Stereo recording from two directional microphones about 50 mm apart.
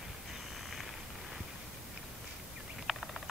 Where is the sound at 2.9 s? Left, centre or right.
Centre.